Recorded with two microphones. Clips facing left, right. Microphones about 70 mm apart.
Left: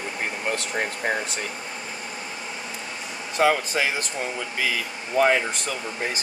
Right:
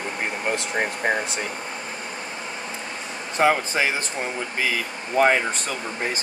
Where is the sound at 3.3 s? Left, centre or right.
Right.